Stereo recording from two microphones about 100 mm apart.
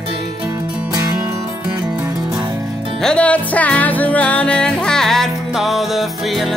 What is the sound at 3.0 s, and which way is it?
Music, 10° left (ahead or behind).